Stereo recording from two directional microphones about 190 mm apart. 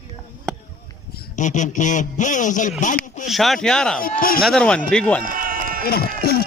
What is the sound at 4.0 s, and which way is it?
Speech, 50° left (ahead or behind).